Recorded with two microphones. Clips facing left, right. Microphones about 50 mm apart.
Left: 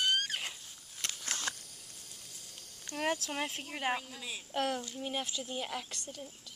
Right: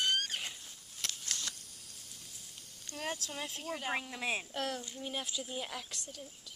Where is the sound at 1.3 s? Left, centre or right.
Left.